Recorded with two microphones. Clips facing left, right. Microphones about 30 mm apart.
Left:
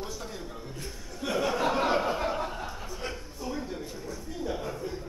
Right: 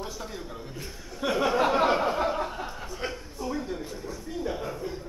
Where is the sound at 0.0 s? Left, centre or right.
Centre.